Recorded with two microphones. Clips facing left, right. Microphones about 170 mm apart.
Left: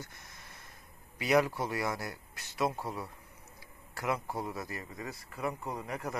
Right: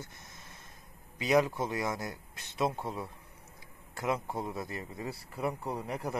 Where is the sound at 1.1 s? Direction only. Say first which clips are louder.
Right 1 dB; 20° right (ahead or behind).